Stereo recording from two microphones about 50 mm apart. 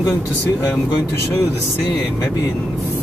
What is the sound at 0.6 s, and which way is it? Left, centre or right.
Speech, left.